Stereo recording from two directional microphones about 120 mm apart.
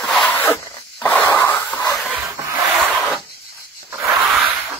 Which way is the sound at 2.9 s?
Centre (ahead or behind).